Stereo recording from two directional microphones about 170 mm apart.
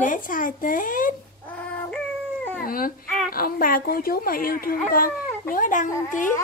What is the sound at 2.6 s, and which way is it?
Baby cry, 55° left (ahead or behind).